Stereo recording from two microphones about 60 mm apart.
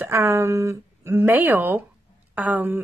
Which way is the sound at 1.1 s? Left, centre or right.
Right.